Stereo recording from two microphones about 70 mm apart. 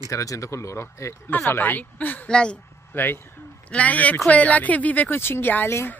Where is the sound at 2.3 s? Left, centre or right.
Centre.